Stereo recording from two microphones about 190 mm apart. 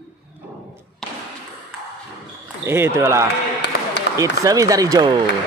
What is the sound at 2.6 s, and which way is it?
Speech, 15° right (ahead or behind).